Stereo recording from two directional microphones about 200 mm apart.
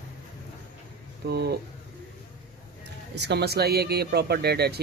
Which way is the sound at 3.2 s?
55° right (ahead or behind).